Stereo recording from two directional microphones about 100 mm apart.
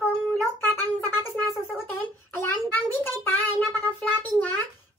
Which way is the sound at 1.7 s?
20° left (ahead or behind).